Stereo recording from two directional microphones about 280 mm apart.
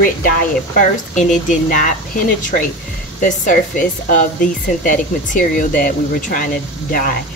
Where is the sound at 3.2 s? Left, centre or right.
Left.